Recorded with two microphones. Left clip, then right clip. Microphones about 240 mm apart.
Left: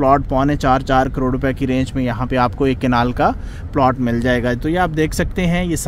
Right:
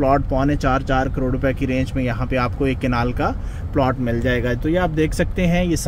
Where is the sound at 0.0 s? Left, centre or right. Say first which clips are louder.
Left 4 dB; left.